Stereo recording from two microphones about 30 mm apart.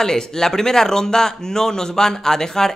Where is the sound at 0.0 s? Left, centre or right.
Centre.